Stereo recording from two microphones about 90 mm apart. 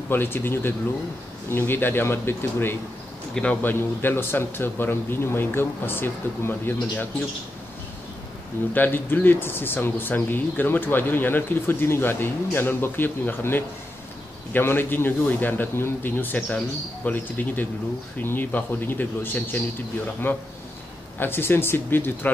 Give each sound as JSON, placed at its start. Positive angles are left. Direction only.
{"t": 0.1, "sound": "speech", "side_deg": 25}
{"t": 3.3, "sound": "speech", "side_deg": 15}
{"t": 3.7, "sound": "speech", "side_deg": 25}
{"t": 8.7, "sound": "speech", "side_deg": 20}